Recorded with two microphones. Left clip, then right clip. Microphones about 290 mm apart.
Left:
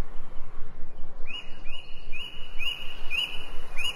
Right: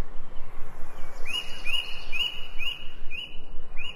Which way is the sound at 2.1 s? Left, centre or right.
Right.